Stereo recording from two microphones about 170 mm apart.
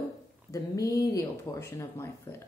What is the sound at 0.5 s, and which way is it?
A woman's voice, 20° left (ahead or behind).